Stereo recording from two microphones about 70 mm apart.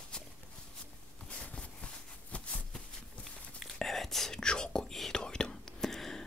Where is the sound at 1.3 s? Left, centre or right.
Centre.